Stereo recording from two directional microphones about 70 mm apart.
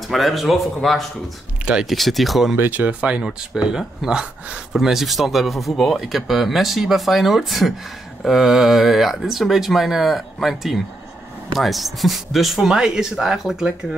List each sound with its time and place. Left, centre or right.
0.1 s speech: centre
1.7 s speech: centre
2.5 s speech: right; by 13.7 s centre